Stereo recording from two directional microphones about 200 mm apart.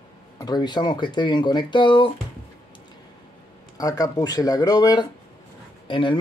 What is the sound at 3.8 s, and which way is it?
Speech, 20° left (ahead or behind).